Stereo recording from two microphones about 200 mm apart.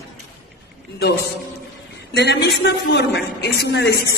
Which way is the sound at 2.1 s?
55° left (ahead or behind).